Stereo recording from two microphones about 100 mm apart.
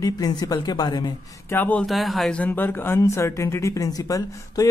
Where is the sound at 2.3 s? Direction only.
15° left (ahead or behind).